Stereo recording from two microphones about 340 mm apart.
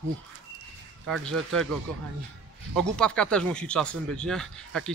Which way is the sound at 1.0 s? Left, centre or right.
Centre.